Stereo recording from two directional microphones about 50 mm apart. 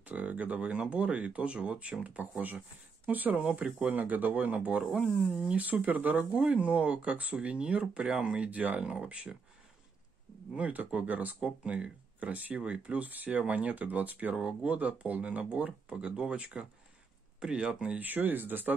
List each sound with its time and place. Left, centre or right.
0.0 s speech: right
3.1 s speech: right
5.3 s speech: centre
5.6 s speech: right
10.5 s speech: right
17.9 s speech: right